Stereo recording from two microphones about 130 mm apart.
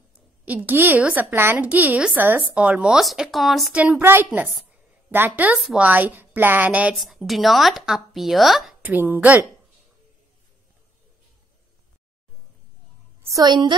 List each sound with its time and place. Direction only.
0.5 s a woman's voice: 15° right (ahead or behind)
3.8 s a woman's voice: 15° right (ahead or behind)
7.0 s speech: centre (ahead or behind)
8.8 s a woman's voice: 10° right (ahead or behind)
13.2 s a woman's voice: 25° right (ahead or behind)